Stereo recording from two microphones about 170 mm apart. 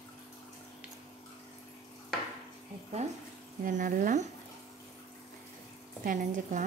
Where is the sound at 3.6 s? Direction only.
55° right (ahead or behind).